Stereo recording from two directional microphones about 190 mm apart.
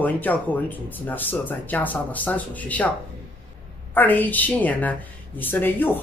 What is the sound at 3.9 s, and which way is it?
Speech, 10° left (ahead or behind).